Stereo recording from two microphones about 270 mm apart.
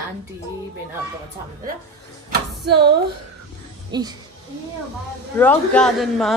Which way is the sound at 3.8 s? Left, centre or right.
Centre.